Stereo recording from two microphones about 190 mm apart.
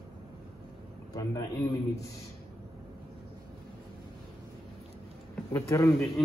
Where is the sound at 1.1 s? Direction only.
15° left (ahead or behind).